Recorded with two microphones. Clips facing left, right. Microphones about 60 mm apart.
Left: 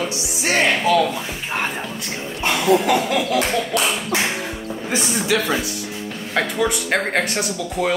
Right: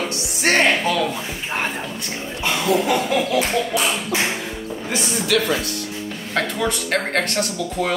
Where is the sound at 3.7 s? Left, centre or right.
Left.